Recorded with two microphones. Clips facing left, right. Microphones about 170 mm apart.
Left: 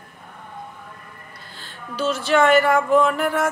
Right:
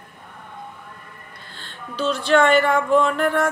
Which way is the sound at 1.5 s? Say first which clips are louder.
Even; 5° left (ahead or behind).